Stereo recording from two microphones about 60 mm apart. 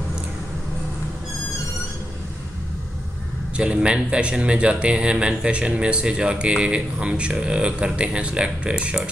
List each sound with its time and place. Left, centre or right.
3.5 s a man's voice: centre